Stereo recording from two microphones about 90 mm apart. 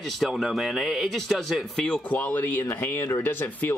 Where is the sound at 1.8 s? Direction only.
15° left (ahead or behind).